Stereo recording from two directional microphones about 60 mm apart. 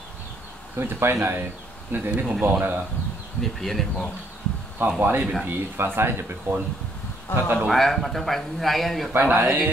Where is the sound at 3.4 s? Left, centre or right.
Centre.